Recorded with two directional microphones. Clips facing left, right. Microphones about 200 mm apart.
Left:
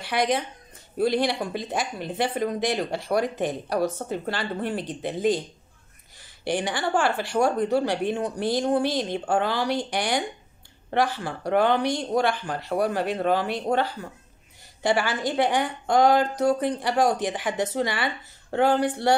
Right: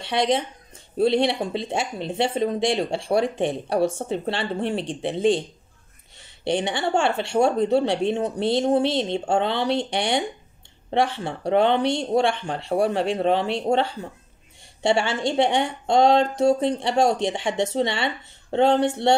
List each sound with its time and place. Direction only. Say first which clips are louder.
0.0 s speech: right 2 dB; 25° right (ahead or behind)